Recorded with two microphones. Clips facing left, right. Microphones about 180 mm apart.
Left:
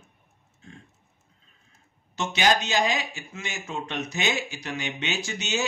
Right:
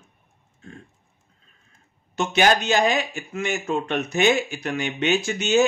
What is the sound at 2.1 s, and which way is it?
Speech, 55° right (ahead or behind).